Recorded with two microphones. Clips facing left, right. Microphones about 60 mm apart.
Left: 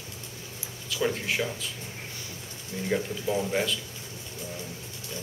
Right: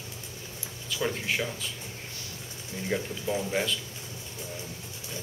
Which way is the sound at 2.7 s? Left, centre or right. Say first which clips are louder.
Left 3 dB; left.